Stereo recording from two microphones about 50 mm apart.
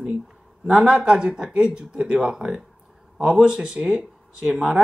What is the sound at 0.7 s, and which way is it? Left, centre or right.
Speech, centre.